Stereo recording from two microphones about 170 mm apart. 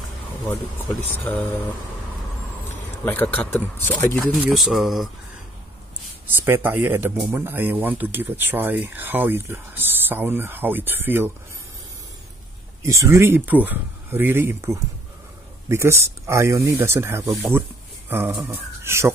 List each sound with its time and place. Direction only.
1.1 s speech: 10° left (ahead or behind)
3.1 s speech: 10° left (ahead or behind)
4.4 s speech: centre (ahead or behind)
6.3 s speech: 15° right (ahead or behind)
12.8 s speech: 15° right (ahead or behind)
17.5 s a sound: 15° right (ahead or behind)
18.4 s speech: 15° right (ahead or behind)